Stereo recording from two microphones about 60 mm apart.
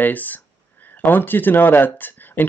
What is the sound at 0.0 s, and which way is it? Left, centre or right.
Speech, left.